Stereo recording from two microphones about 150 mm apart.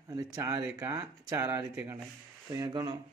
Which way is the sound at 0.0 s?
25° right (ahead or behind).